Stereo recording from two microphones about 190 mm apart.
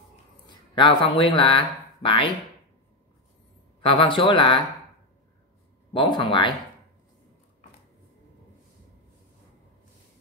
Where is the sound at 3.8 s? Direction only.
30° left (ahead or behind).